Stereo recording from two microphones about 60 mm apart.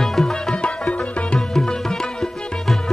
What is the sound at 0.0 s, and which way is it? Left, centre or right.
Music, centre.